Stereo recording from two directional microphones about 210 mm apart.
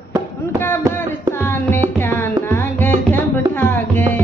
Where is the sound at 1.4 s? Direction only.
10° left (ahead or behind).